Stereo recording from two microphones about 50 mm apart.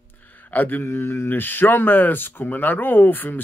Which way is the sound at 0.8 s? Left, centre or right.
Left.